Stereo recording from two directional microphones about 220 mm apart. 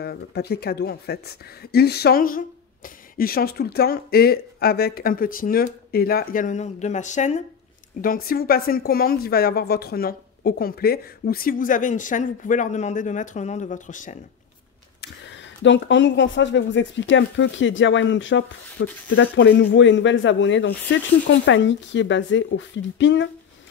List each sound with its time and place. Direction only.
0.0 s a woman's voice: 45° left (ahead or behind)
15.6 s speech: 55° left (ahead or behind)